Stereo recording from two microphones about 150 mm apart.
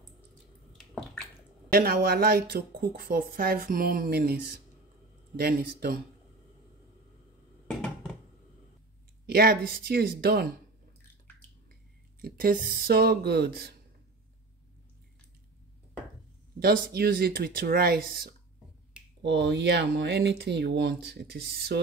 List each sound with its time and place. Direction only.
0.7 s bathtub: centre (ahead or behind)
1.7 s speech: 90° right
9.2 s speech: 90° right
12.2 s speech: 80° right
16.5 s speech: 90° right
18.9 s finger snapping: 5° right (ahead or behind)
19.3 s speech: 90° right